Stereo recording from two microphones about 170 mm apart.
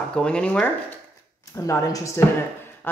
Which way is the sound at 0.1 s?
5° left (ahead or behind).